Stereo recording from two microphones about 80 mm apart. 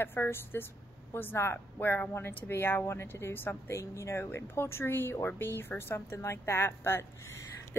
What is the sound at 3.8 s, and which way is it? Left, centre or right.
A woman's voice, left.